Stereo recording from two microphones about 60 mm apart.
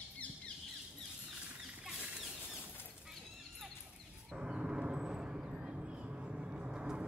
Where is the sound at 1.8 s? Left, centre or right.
Centre.